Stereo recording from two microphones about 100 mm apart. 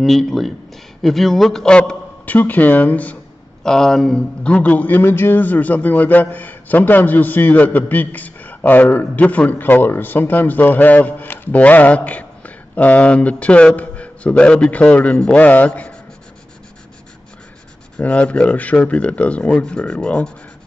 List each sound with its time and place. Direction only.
0.0 s a man's voice: centre (ahead or behind)
3.6 s a man's voice: 5° left (ahead or behind)
17.9 s a man's voice: 10° left (ahead or behind)